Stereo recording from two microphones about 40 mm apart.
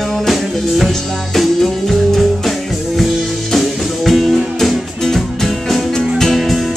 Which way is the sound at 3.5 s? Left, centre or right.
Centre.